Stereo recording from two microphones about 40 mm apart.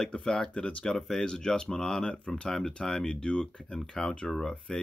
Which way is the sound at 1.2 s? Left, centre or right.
Centre.